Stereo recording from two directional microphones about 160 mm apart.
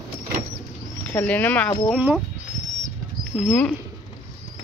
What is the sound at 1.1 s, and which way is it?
Speech, 10° left (ahead or behind).